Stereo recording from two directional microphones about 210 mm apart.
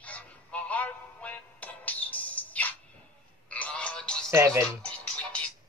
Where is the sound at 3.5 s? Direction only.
5° left (ahead or behind).